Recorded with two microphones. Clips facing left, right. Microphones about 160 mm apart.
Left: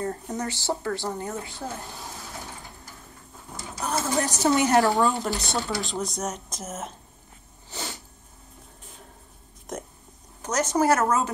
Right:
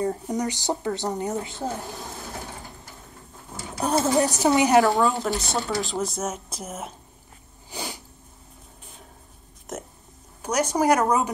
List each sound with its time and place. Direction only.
0.0 s speech: 10° right (ahead or behind)
3.8 s speech: 25° right (ahead or behind)
4.4 s a woman's voice: 15° right (ahead or behind)
4.8 s a woman's voice: centre (ahead or behind)
7.7 s sneeze: 15° right (ahead or behind)
9.7 s a woman's voice: 5° right (ahead or behind)